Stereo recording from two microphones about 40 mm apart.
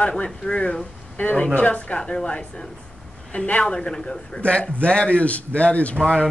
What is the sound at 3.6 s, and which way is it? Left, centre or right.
Speech, left.